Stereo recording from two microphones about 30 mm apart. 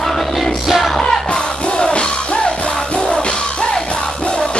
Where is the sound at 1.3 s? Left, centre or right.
Left.